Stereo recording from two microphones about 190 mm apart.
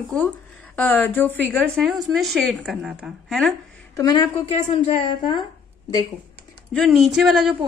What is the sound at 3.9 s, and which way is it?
A woman's voice, 20° left (ahead or behind).